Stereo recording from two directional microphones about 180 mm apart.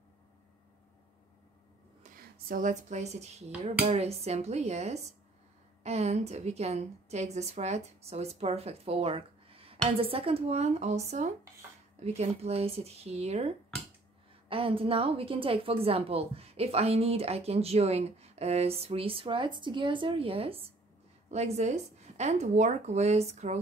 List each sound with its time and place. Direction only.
2.0 s a woman's voice: 55° right (ahead or behind); by 23.6 s 40° right (ahead or behind)